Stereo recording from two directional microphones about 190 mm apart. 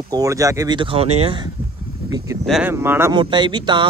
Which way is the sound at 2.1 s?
15° right (ahead or behind).